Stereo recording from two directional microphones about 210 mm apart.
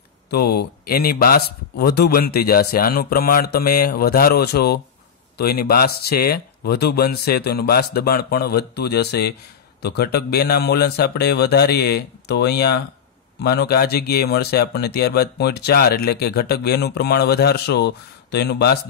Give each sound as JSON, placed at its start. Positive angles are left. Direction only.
{"t": 0.3, "sound": "speech", "side_deg": 50}